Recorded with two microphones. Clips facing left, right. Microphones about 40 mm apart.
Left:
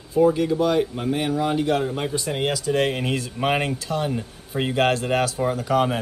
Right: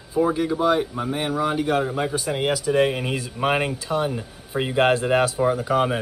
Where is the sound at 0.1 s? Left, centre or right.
Centre.